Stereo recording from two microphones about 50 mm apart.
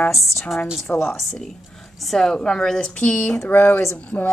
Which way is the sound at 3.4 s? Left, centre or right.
Left.